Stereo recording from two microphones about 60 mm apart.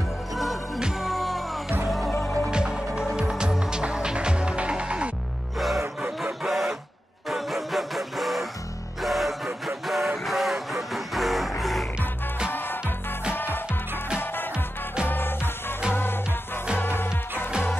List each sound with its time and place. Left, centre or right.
1.0 s music: centre
2.5 s music: centre
5.8 s music: right
6.4 s printer: centre
7.2 s music: centre
13.3 s music: left
15.0 s music: left